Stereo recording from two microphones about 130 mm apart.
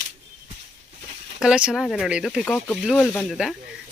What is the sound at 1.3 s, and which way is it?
Speech, 5° right (ahead or behind).